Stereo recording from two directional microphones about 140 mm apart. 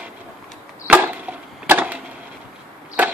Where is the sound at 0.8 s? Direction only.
10° right (ahead or behind).